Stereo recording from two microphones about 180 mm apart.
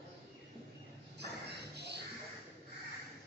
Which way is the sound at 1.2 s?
65° right (ahead or behind).